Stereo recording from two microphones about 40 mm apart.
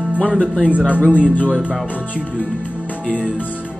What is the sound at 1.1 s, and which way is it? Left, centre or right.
Speech, left.